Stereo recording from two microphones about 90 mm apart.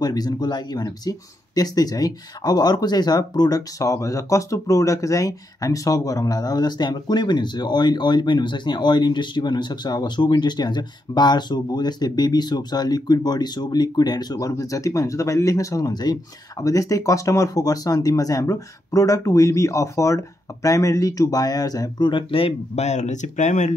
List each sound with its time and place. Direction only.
0.0 s speech: 50° left (ahead or behind)